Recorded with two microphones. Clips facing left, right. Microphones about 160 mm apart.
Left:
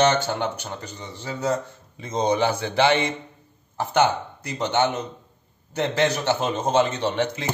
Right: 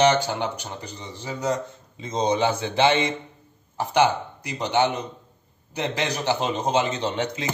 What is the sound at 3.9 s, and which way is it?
Speech, 15° right (ahead or behind).